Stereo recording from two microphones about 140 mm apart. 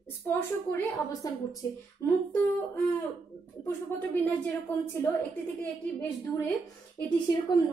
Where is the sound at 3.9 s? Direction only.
15° left (ahead or behind).